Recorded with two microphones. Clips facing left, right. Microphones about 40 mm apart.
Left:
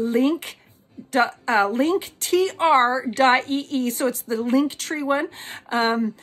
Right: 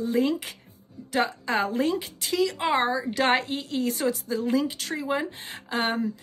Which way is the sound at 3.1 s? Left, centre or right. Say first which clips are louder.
Left 6 dB; left.